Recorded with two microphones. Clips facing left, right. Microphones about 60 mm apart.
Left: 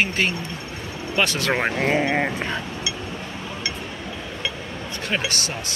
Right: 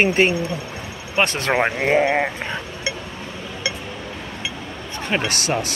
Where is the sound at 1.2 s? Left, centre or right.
Right.